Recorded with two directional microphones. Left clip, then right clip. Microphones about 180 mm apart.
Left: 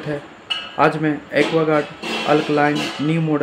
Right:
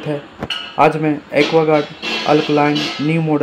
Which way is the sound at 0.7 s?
20° right (ahead or behind).